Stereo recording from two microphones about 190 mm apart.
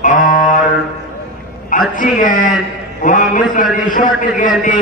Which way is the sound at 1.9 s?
45° left (ahead or behind).